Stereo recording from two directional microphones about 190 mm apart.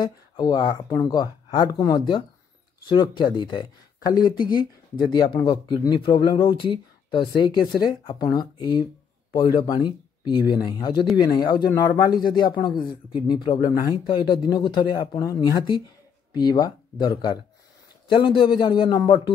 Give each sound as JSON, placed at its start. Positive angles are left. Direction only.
{"t": 0.0, "sound": "speech", "side_deg": 20}